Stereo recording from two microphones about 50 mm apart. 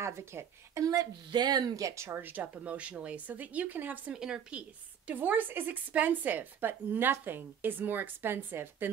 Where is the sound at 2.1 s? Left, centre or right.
Right.